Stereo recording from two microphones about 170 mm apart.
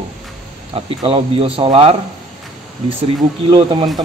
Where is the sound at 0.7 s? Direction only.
35° right (ahead or behind).